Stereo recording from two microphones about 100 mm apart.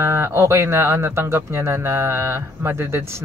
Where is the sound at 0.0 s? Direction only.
25° right (ahead or behind).